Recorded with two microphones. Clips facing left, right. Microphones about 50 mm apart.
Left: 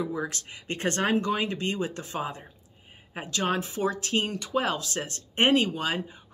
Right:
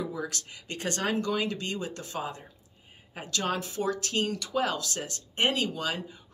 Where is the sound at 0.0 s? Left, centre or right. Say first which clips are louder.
Left 3 dB; left.